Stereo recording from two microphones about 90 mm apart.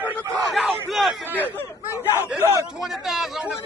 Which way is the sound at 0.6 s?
Centre (ahead or behind).